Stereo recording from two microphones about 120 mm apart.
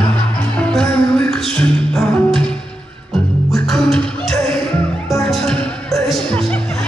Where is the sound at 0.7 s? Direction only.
5° left (ahead or behind).